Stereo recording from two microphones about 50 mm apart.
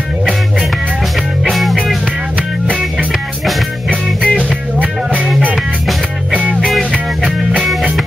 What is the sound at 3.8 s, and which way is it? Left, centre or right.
Music, centre.